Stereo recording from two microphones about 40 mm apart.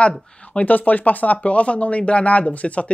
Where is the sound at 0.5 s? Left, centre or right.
Left.